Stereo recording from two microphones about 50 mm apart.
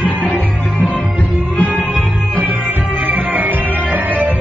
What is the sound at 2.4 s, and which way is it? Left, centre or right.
Music, right.